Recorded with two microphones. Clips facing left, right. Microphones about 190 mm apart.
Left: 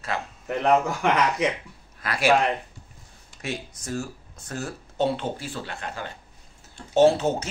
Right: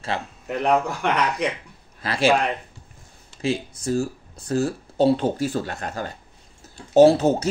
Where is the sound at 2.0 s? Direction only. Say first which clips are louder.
Right 4 dB; 30° right (ahead or behind).